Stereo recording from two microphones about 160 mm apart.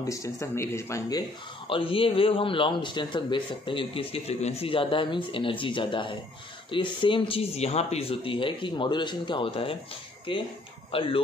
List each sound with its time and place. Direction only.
0.0 s speech: 20° left (ahead or behind)
1.7 s a man's voice: 35° left (ahead or behind)